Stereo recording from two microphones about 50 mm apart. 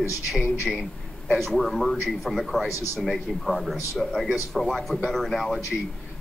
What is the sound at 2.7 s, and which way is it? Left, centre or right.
Speech, left.